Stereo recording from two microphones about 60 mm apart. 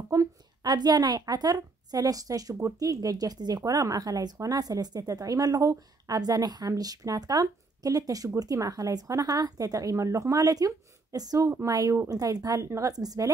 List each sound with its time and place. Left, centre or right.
1.2 s speech: right
10.3 s a woman's voice: right
11.6 s speech: right
12.1 s speech: right
12.7 s a woman's voice: right